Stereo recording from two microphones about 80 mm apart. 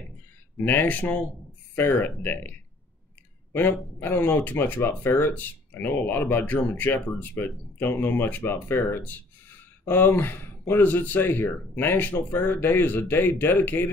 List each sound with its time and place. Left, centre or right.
0.7 s speech: left
4.0 s speech: left